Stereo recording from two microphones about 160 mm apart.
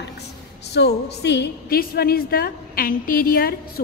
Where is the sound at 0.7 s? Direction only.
90° left.